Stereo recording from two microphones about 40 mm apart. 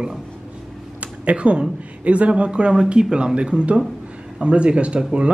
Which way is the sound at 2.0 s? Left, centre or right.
Right.